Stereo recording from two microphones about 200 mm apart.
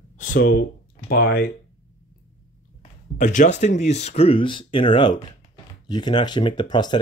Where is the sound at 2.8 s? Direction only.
40° left (ahead or behind); by 6.9 s 20° left (ahead or behind).